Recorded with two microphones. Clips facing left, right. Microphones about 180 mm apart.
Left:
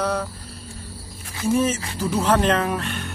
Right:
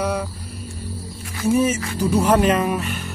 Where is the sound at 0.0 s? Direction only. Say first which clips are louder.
Right 1 dB; 10° right (ahead or behind).